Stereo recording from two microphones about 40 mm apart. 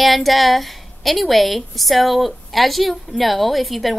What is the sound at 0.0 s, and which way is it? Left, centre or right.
A woman's voice, centre.